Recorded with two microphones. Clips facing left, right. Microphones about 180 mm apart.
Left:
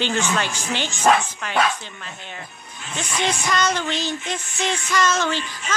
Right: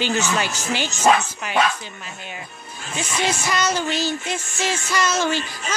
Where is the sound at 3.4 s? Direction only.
10° right (ahead or behind).